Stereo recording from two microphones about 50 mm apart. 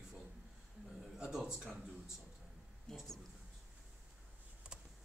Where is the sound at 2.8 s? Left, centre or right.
Centre.